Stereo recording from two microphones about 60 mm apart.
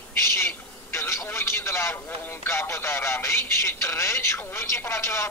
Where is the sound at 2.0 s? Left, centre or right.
Left.